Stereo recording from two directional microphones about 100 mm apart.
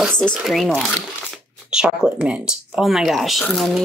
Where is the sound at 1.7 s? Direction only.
10° right (ahead or behind).